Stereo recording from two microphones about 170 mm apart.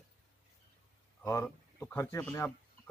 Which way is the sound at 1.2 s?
15° left (ahead or behind).